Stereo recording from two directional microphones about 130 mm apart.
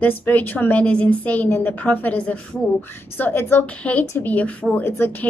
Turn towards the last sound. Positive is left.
turn(degrees=15)  # may be behind; listen again after turning